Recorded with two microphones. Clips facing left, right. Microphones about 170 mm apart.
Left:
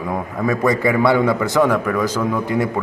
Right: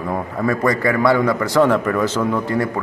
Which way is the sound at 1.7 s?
10° left (ahead or behind).